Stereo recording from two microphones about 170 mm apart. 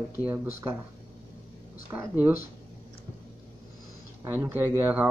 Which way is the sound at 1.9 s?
15° right (ahead or behind).